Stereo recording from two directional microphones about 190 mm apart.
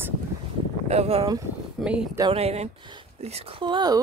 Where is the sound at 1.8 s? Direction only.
5° right (ahead or behind).